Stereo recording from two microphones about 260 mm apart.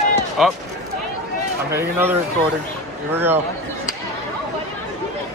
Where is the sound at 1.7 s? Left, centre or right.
Centre.